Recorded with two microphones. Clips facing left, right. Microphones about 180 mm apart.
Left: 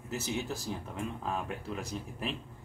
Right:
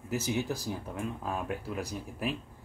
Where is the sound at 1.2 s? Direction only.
10° right (ahead or behind).